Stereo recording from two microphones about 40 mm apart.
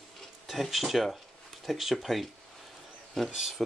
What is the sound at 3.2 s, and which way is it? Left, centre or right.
Speech, centre.